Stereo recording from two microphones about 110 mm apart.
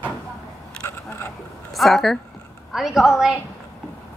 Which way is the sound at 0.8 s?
25° left (ahead or behind).